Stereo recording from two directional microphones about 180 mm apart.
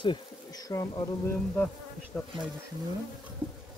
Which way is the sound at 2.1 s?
10° left (ahead or behind).